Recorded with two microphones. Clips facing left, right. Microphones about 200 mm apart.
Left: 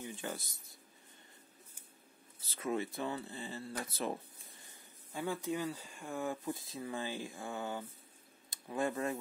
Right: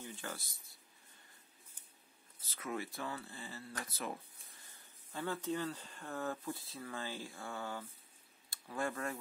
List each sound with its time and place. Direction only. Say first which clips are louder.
0.0 s speech: left 4 dB; 15° left (ahead or behind)
2.5 s speech: left 5 dB; 25° left (ahead or behind)
5.1 s speech: left 2 dB; 10° left (ahead or behind)